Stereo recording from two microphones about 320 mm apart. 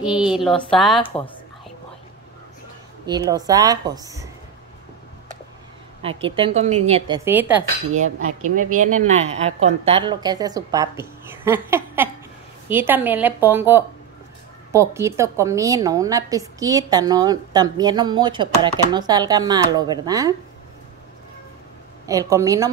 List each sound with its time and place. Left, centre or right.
0.0 s speech: centre
3.1 s a woman's voice: centre
6.0 s a woman's voice: centre
7.2 s speech: centre
8.5 s a woman's voice: right
22.0 s a woman's voice: centre